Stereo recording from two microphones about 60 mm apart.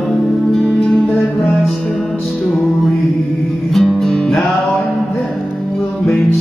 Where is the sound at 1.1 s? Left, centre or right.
Left.